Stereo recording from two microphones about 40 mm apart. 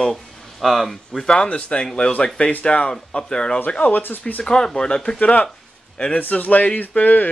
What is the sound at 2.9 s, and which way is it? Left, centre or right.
Speech, centre.